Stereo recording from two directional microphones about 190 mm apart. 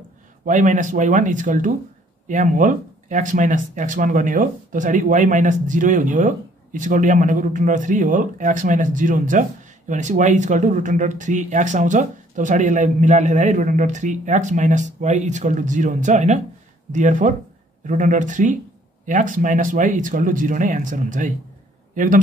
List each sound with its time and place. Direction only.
0.5 s a man's voice: 40° right (ahead or behind)